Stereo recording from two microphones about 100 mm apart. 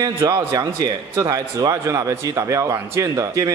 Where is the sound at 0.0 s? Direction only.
35° right (ahead or behind).